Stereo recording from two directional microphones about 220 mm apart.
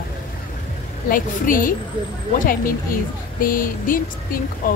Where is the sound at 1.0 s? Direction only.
40° left (ahead or behind).